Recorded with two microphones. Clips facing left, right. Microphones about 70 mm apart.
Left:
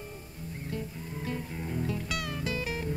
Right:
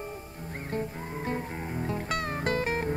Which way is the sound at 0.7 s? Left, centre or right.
Right.